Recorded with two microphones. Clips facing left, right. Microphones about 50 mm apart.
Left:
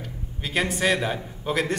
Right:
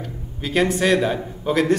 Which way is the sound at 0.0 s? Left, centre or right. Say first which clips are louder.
Right 4 dB; centre.